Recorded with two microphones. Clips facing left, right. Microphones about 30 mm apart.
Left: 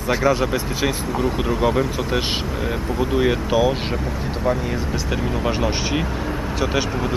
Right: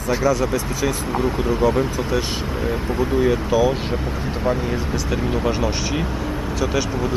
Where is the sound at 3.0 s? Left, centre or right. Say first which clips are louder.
Even; left.